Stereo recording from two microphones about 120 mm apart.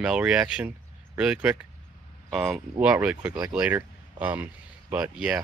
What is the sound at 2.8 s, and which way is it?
Speech, 10° right (ahead or behind).